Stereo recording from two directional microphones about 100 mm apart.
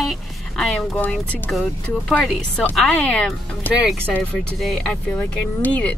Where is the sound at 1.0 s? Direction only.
15° left (ahead or behind).